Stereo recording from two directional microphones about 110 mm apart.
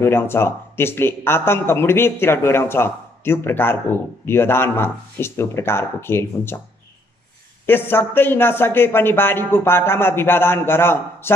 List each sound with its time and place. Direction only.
0.0 s speech: 20° left (ahead or behind)
7.6 s speech: 20° left (ahead or behind)